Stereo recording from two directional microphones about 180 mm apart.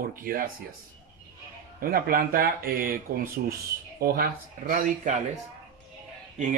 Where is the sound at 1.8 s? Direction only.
55° right (ahead or behind).